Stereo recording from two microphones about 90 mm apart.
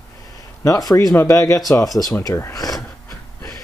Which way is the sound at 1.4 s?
40° left (ahead or behind).